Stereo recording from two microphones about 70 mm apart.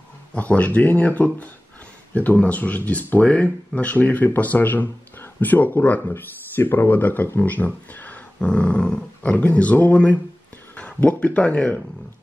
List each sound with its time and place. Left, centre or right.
0.3 s speech: centre